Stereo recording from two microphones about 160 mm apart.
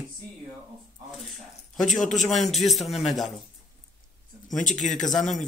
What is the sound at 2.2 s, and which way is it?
Speech, centre (ahead or behind).